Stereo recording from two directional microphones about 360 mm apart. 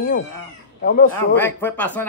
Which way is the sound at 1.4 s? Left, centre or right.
Centre.